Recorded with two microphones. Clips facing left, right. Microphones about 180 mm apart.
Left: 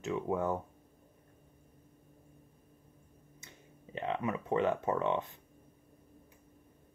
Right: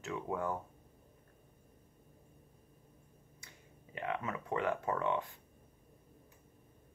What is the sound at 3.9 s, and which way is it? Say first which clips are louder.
Speech: left 4 dB; 25° left (ahead or behind).